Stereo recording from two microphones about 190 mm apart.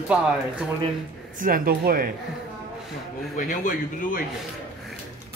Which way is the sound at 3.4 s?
45° left (ahead or behind).